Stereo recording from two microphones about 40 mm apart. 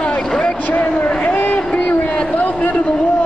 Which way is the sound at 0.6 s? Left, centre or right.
Left.